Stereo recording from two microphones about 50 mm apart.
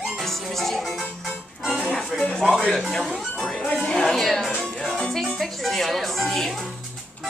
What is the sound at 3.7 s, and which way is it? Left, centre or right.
A woman's voice, centre.